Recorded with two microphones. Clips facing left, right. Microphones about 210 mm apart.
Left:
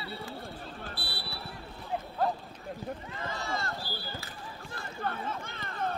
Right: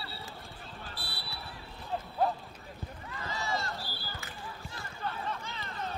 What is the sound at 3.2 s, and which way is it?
Run, 55° left (ahead or behind).